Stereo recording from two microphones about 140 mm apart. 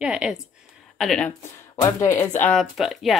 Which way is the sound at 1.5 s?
20° left (ahead or behind).